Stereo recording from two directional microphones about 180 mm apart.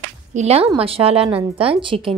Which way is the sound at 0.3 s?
35° right (ahead or behind).